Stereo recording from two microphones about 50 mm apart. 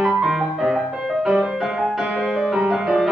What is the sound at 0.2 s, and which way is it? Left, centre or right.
Music, centre.